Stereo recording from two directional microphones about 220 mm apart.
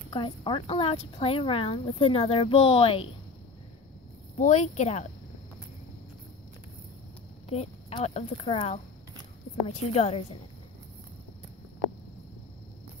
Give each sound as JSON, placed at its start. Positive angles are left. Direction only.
{"t": 0.1, "sound": "speech", "side_deg": 25}
{"t": 4.4, "sound": "speech", "side_deg": 35}
{"t": 7.4, "sound": "speech", "side_deg": 30}